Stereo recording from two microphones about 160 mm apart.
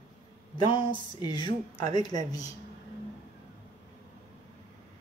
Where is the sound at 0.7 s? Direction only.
30° left (ahead or behind).